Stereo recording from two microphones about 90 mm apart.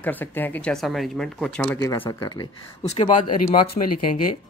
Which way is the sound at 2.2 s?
45° left (ahead or behind).